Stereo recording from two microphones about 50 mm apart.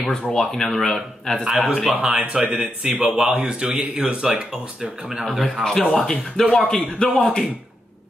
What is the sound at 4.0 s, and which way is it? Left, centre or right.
Speech, centre.